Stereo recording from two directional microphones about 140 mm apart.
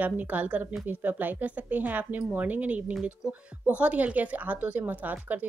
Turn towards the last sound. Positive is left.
turn(degrees=-10)  # may be behind; listen again after turning